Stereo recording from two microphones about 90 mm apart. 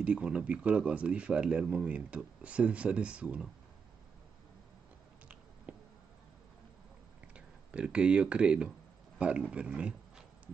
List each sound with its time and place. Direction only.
0.0 s speech: 10° right (ahead or behind)
5.7 s a sound: 15° right (ahead or behind)
7.3 s speech: 10° right (ahead or behind)